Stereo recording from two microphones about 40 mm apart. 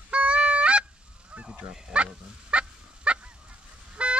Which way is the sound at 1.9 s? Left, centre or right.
Right.